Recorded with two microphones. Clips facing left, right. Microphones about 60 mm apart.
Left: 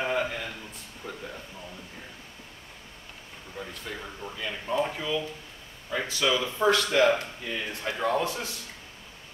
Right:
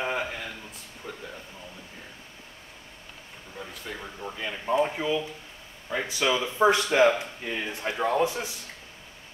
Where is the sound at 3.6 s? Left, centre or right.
Centre.